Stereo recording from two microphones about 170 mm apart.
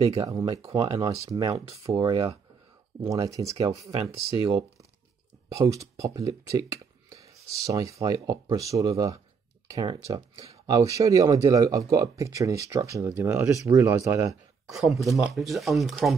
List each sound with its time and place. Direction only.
0.0 s speech: 35° right (ahead or behind)
3.0 s speech: 20° right (ahead or behind)
5.5 s speech: 20° right (ahead or behind)
14.7 s speech: centre (ahead or behind)